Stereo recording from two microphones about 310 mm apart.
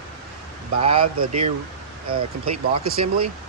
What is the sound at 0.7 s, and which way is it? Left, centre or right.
Speech, centre.